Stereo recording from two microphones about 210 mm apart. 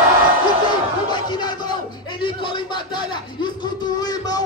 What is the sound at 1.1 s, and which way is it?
Music, 20° left (ahead or behind).